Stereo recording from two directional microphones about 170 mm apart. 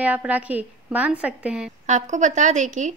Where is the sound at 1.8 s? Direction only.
45° right (ahead or behind).